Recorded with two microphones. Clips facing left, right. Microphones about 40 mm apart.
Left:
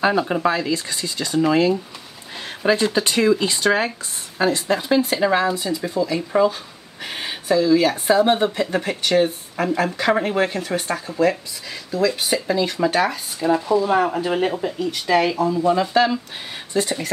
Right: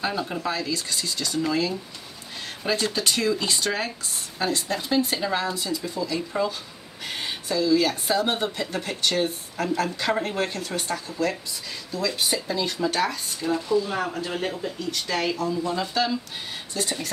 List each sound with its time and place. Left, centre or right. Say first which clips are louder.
0.0 s speech: left 9 dB; left
5.5 s speech: left 6 dB; centre
13.5 s speech: left 6 dB; left
14.8 s speech: left 9 dB; centre
16.8 s speech: left 4 dB; centre